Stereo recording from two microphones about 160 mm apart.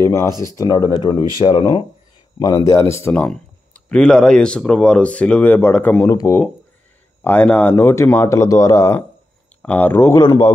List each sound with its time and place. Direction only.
0.5 s speech: 20° left (ahead or behind)